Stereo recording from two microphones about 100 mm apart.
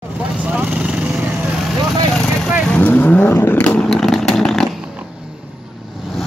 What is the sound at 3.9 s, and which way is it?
Vehicle, centre (ahead or behind).